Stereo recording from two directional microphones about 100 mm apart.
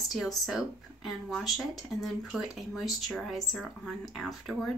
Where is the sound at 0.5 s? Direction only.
5° right (ahead or behind).